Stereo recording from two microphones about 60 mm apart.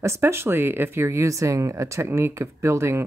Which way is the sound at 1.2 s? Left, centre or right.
Right.